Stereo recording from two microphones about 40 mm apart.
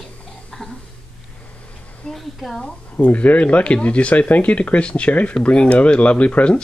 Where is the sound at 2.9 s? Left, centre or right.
Left.